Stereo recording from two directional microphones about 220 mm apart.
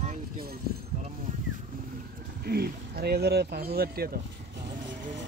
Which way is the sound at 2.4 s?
45° right (ahead or behind).